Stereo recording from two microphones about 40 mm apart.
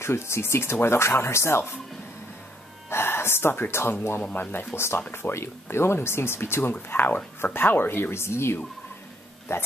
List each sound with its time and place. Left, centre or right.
0.0 s speech: left
2.9 s speech: left
4.2 s speech: left
4.7 s speech: left
6.9 s speech: left